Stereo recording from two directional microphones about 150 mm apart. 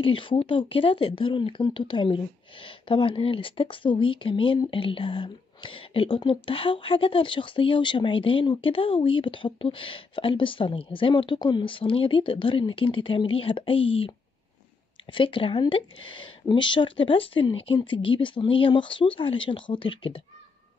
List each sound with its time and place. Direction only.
0.0 s speech: 35° left (ahead or behind)
15.1 s speech: 35° left (ahead or behind)